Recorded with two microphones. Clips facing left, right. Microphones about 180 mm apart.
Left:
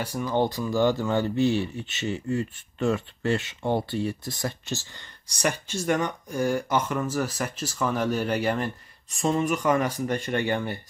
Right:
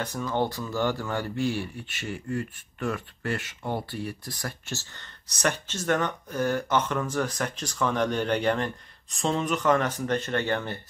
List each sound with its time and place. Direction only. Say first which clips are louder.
0.0 s speech: left 3 dB; 10° left (ahead or behind)